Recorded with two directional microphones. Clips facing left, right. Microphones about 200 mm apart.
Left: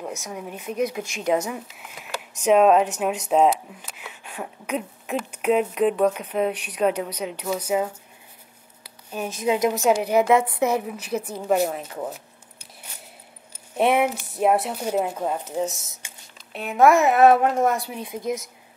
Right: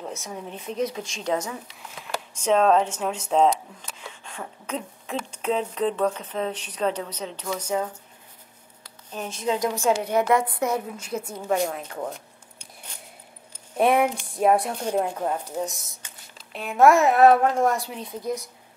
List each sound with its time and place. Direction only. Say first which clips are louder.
0.0 s speech: left 2 dB; 10° left (ahead or behind)
8.8 s a sound: left 4 dB; 10° left (ahead or behind)
10.0 s speech: left 3 dB; 5° left (ahead or behind)
11.4 s a sound: left 3 dB; 5° left (ahead or behind)
13.7 s speech: even; 5° left (ahead or behind)
18.0 s a woman's voice: left 2 dB; 20° left (ahead or behind)